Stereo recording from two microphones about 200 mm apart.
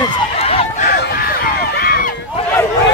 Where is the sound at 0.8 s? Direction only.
45° left (ahead or behind).